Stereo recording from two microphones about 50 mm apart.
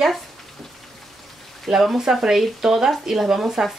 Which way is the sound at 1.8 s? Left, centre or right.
Centre.